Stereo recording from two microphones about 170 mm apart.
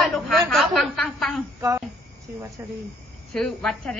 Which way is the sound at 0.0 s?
Centre (ahead or behind).